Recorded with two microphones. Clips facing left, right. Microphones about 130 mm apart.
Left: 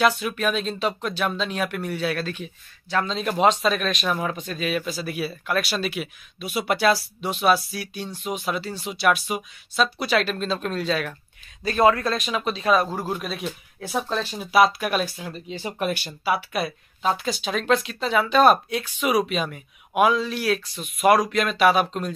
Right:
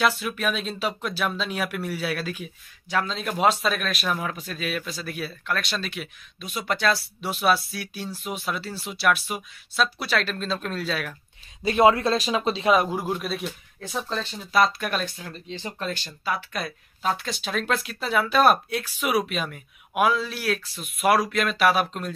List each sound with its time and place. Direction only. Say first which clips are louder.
0.0 s speech: left 3 dB; centre (ahead or behind)
11.6 s speech: right 1 dB; 25° right (ahead or behind)
13.1 s speech: even; centre (ahead or behind)